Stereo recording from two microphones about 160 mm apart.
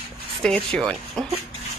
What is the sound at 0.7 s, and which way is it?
Speech, 5° left (ahead or behind).